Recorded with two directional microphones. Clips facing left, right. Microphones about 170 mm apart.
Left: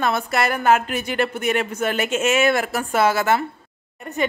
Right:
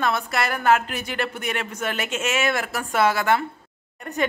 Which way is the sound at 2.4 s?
30° left (ahead or behind).